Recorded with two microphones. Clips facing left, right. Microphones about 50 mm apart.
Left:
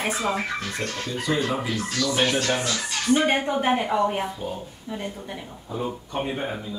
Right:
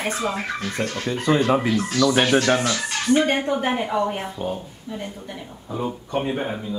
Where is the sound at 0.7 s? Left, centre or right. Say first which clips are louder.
Right 4 dB; right.